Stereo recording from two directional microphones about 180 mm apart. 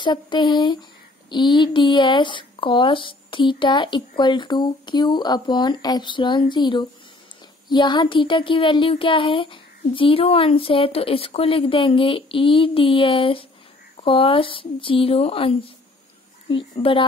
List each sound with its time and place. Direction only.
0.0 s speech: 25° left (ahead or behind)